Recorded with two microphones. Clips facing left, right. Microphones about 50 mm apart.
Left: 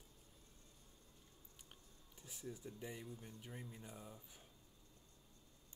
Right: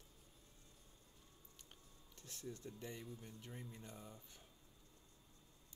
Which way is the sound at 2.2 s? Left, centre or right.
Centre.